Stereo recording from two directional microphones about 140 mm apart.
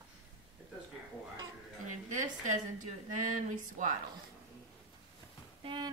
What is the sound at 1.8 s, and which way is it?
A woman's voice, 65° right (ahead or behind).